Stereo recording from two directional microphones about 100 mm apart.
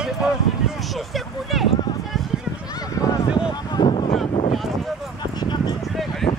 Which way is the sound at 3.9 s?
75° left (ahead or behind).